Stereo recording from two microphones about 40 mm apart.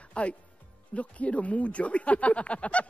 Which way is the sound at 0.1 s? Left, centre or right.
Left.